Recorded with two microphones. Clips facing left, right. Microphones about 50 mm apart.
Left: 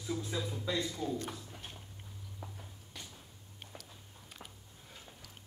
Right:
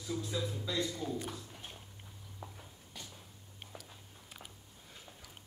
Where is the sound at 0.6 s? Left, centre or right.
Left.